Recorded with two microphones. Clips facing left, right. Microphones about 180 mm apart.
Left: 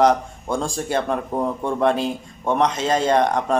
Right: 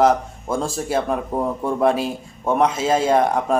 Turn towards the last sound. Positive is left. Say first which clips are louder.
# right 1 dB
turn(degrees=-5)  # may be behind; listen again after turning